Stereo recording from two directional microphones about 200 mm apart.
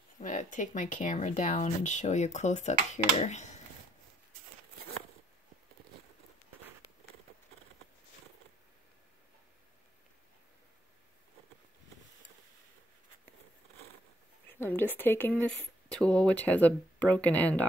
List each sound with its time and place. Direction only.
0.2 s speech: 40° left (ahead or behind)
14.5 s speech: 10° left (ahead or behind)